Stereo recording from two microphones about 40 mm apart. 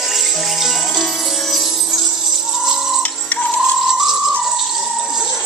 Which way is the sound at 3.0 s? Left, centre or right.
Left.